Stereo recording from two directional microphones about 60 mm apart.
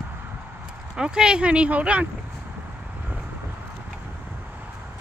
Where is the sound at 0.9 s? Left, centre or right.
Centre.